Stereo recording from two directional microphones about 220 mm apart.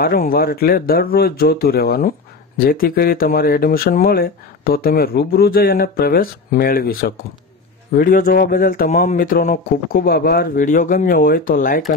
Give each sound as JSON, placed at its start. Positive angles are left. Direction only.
{"t": 0.0, "sound": "speech", "side_deg": 40}